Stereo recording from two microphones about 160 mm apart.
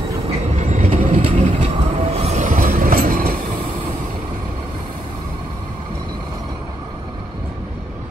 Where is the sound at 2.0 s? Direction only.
40° right (ahead or behind); by 3.3 s 65° right (ahead or behind).